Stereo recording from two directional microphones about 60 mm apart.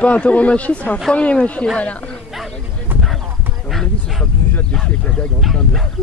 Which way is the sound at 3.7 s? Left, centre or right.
Centre.